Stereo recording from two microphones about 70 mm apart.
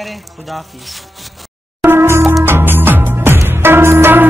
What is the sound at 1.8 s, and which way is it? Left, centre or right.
Music, right.